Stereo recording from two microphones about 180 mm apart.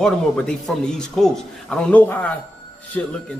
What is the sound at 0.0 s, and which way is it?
A man's voice, 5° left (ahead or behind).